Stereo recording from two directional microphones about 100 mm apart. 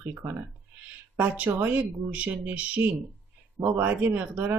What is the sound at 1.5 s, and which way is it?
Speech, 20° right (ahead or behind).